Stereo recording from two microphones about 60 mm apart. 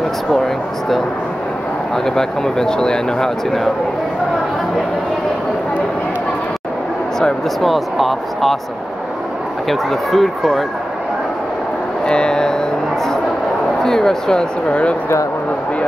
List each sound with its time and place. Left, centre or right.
2.0 s speech: centre
7.2 s speech: centre
9.7 s speech: centre
12.1 s speech: centre
13.8 s speech: centre
14.7 s speech: centre